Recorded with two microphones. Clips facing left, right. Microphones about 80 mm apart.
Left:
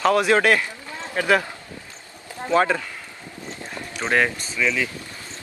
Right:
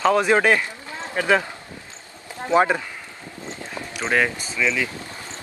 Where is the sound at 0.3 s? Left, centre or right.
Centre.